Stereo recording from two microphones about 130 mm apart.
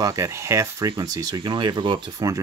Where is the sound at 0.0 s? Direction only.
25° right (ahead or behind).